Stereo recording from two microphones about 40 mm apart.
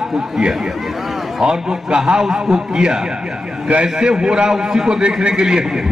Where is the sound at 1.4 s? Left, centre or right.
Centre.